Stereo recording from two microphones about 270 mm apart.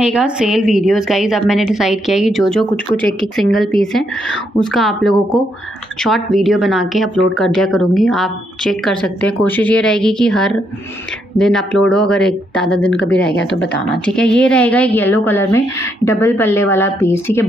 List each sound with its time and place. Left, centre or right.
0.0 s speech: centre
13.1 s speech: left
13.7 s a woman's voice: centre